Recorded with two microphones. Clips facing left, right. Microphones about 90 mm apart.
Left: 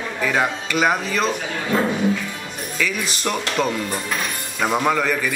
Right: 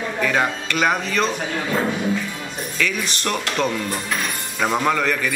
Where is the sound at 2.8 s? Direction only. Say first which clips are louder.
Even; 5° left (ahead or behind).